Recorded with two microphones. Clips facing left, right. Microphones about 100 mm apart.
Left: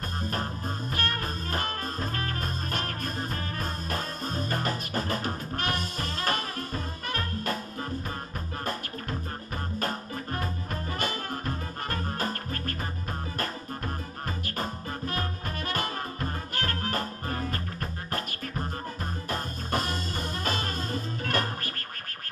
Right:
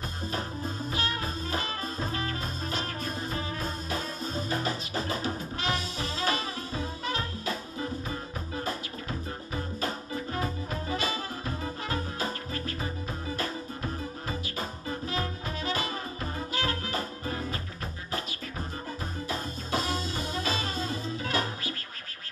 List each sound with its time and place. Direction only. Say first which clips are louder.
0.9 s music: left 1 dB; 55° left (ahead or behind)
9.8 s music: left 2 dB; 50° left (ahead or behind)
14.4 s music: left 2 dB; 50° left (ahead or behind)
19.2 s music: left 1 dB; 50° left (ahead or behind)